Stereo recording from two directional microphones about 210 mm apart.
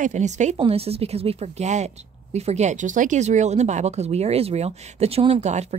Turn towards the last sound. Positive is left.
turn(degrees=-30)  # may be behind; listen again after turning